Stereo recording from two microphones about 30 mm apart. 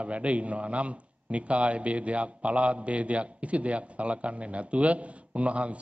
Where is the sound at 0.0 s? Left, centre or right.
Right.